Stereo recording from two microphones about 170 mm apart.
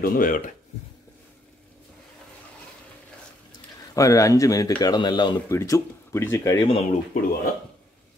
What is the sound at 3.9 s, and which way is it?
Speech, 20° left (ahead or behind).